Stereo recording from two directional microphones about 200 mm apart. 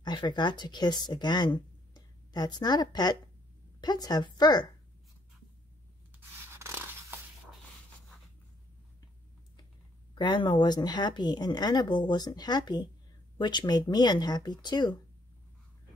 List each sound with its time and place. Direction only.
0.0 s speech: 20° left (ahead or behind)
6.5 s a sound: 10° right (ahead or behind)
10.1 s speech: 25° left (ahead or behind)